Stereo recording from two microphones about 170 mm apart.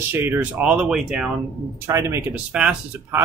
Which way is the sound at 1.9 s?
15° right (ahead or behind).